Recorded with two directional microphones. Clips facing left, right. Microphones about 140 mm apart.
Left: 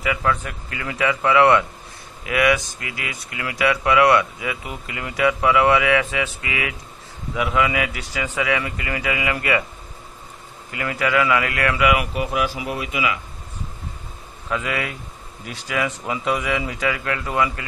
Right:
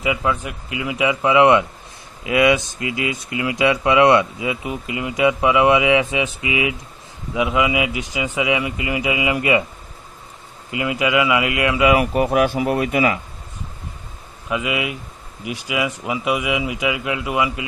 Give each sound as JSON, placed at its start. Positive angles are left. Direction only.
{"t": 0.0, "sound": "speech", "side_deg": -15}
{"t": 10.7, "sound": "speech", "side_deg": -15}
{"t": 11.9, "sound": "speech", "side_deg": -40}
{"t": 14.5, "sound": "speech", "side_deg": -10}